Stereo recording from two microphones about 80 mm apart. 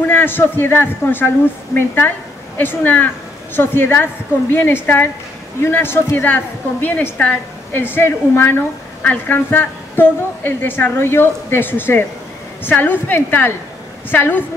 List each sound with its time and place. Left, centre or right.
0.0 s a woman's voice: left